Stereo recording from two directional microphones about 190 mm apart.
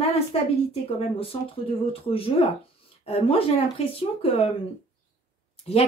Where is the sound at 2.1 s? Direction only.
30° left (ahead or behind).